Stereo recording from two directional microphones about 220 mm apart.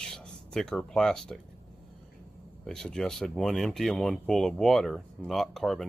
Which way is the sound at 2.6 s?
Centre (ahead or behind).